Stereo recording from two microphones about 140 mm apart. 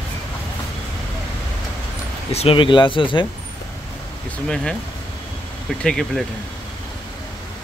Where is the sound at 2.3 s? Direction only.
40° left (ahead or behind).